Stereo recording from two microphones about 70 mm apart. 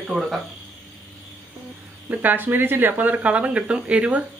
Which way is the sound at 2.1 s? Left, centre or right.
Right.